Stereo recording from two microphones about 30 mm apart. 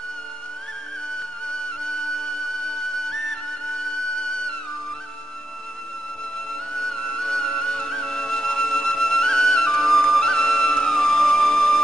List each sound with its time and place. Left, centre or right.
6.7 s music: left
7.9 s flute: left
8.6 s flute: left
10.6 s music: left
11.0 s music: left